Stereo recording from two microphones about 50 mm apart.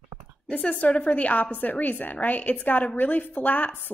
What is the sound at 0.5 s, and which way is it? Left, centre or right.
A woman's voice, left.